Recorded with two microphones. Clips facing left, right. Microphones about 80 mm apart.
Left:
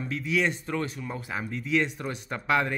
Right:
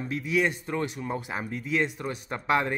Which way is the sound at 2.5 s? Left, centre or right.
Right.